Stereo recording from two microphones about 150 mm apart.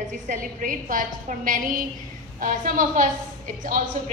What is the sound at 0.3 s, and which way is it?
A woman's voice, 60° right (ahead or behind).